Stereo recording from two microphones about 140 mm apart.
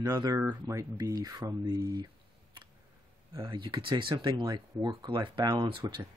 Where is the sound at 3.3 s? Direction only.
35° right (ahead or behind).